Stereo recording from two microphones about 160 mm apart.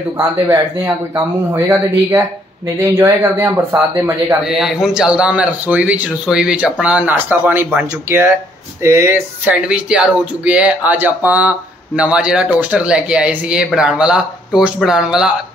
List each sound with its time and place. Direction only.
0.2 s speech: 20° right (ahead or behind)
4.5 s speech: centre (ahead or behind)